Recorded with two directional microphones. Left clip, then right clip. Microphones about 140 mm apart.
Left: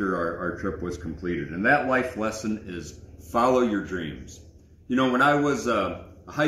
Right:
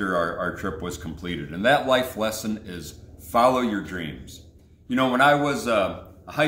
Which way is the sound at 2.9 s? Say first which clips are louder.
Right 4 dB; 20° right (ahead or behind).